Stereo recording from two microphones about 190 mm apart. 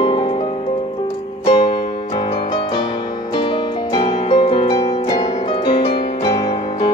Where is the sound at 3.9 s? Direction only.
25° left (ahead or behind).